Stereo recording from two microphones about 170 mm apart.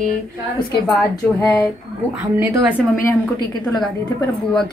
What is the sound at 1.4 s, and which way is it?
Speech, 15° left (ahead or behind).